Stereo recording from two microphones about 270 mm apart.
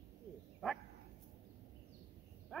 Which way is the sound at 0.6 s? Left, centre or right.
Centre.